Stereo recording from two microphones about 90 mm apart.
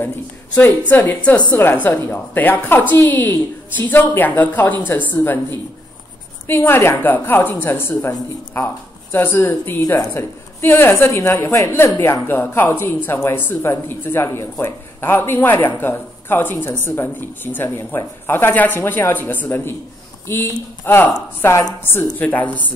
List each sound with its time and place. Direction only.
0.0 s speech: 25° left (ahead or behind)